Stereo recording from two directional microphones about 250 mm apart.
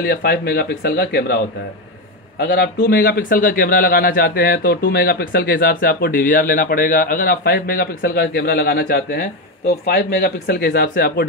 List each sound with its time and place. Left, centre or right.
0.0 s a man's voice: left